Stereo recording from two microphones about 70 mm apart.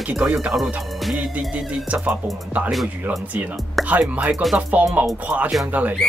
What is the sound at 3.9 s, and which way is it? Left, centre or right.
Speech, right.